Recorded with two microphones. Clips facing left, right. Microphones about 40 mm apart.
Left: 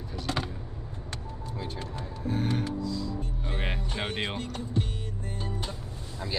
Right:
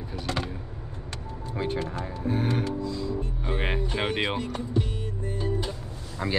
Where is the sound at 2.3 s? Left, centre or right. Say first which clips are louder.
Right 3 dB; centre.